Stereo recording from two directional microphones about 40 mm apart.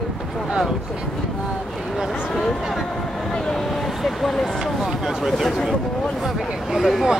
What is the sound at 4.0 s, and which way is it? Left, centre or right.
Speech, centre.